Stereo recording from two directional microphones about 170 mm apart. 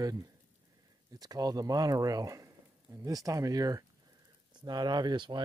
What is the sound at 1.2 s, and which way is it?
Speech, 25° right (ahead or behind).